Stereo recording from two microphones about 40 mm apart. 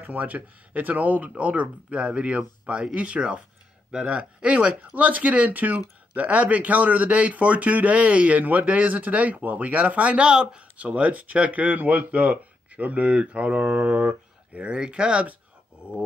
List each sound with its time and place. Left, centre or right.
0.0 s speech: right
10.2 s speech: right